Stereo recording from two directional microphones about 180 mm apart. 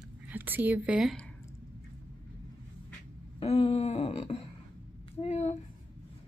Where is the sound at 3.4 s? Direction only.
35° left (ahead or behind).